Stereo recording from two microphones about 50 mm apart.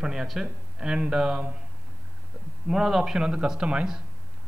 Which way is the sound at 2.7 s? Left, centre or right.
Centre.